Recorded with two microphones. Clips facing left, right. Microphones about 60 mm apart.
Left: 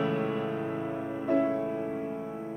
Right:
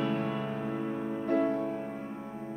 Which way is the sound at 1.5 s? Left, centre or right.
Left.